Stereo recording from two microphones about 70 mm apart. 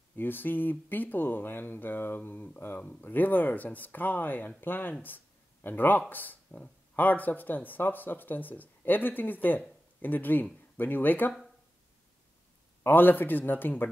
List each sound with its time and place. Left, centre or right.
0.1 s speech: left
12.8 s speech: left